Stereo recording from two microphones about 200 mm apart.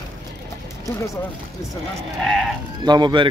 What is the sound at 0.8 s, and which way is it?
Speech, 15° left (ahead or behind).